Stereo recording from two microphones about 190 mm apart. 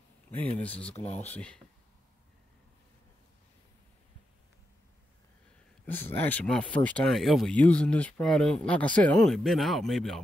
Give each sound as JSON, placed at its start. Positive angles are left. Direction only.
{"t": 0.5, "sound": "speech", "side_deg": 5}
{"t": 5.9, "sound": "speech", "side_deg": 10}